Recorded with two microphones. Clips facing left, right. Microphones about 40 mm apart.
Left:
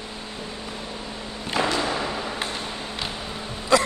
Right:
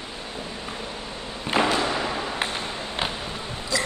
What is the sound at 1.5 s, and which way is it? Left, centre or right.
Thump, right.